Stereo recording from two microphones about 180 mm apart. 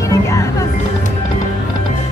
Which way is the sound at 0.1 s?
15° left (ahead or behind).